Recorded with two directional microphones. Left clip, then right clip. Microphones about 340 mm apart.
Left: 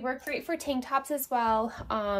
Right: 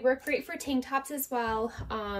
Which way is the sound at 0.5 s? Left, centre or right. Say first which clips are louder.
Left 2 dB; centre.